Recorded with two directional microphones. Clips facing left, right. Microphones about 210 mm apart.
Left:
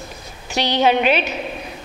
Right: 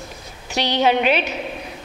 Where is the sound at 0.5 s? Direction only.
10° left (ahead or behind).